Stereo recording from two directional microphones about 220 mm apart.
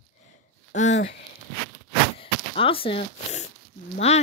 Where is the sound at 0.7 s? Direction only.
35° left (ahead or behind).